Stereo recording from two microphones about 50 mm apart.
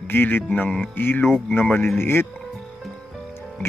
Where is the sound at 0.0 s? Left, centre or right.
Left.